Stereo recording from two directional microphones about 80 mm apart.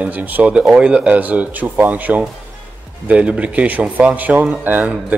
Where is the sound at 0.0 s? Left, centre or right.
Right.